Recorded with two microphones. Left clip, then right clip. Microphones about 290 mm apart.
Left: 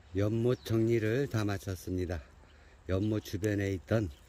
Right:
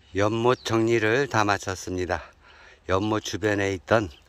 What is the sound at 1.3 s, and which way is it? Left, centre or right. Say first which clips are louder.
Speech: right 14 dB; right.